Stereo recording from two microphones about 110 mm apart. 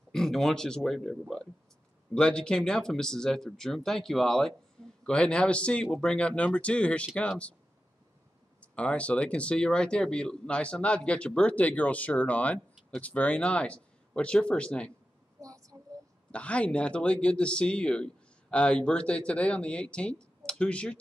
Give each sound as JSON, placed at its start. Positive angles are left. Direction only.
{"t": 0.1, "sound": "speech", "side_deg": 5}
{"t": 2.1, "sound": "speech", "side_deg": 10}
{"t": 8.5, "sound": "speech", "side_deg": 10}
{"t": 15.4, "sound": "a sound", "side_deg": -30}
{"t": 16.3, "sound": "speech", "side_deg": 10}